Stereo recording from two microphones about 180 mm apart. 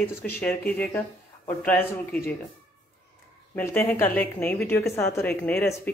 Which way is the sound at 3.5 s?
10° left (ahead or behind).